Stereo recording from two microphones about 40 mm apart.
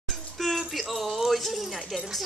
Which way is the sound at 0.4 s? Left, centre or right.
Centre.